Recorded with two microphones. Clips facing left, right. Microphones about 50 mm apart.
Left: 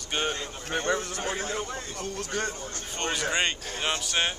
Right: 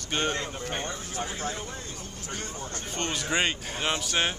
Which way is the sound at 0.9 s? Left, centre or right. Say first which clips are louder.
Left 6 dB; left.